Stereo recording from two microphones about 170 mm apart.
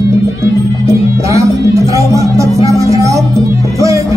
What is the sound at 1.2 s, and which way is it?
Music, 15° right (ahead or behind).